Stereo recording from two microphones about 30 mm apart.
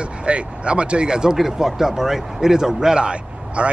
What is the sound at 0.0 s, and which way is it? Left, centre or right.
Speech, right.